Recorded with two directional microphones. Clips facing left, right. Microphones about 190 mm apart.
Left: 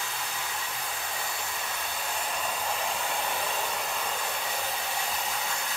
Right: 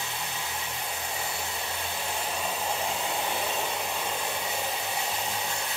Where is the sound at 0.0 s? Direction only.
20° right (ahead or behind).